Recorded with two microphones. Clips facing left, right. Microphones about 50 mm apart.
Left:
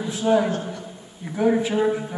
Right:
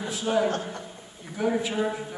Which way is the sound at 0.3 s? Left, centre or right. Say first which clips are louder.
Left 5 dB; centre.